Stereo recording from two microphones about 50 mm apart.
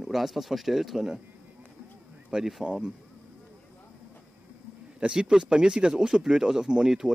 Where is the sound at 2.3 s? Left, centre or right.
Centre.